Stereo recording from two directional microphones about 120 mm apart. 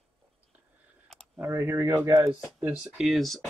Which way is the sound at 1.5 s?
20° right (ahead or behind).